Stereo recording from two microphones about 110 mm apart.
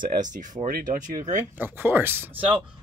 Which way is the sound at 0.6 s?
30° right (ahead or behind).